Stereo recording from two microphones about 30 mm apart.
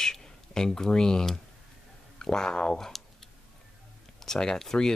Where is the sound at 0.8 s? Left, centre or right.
Left.